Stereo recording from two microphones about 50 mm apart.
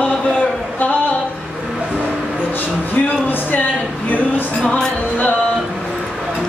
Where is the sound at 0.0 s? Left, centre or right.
Left.